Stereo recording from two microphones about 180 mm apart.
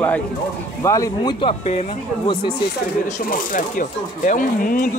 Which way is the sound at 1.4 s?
35° left (ahead or behind).